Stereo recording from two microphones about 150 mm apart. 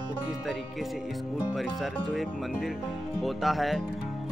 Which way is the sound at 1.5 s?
Centre (ahead or behind).